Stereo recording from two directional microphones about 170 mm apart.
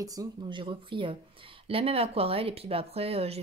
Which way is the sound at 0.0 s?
20° right (ahead or behind).